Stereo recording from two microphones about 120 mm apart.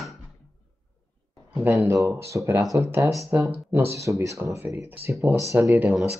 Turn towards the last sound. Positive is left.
turn(degrees=-15)  # may be behind; listen again after turning